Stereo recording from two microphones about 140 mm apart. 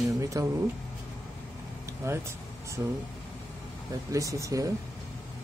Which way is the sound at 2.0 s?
20° right (ahead or behind).